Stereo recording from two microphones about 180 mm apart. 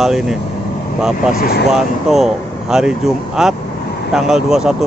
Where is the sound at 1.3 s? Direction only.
60° left (ahead or behind).